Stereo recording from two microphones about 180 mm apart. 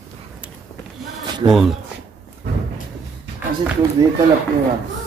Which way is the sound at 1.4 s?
20° right (ahead or behind).